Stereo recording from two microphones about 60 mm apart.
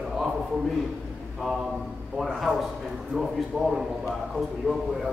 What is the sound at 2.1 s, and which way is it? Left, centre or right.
A man's voice, centre.